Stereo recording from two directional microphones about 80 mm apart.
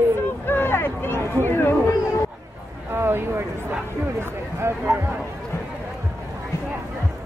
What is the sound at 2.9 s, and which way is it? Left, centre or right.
Speech, right.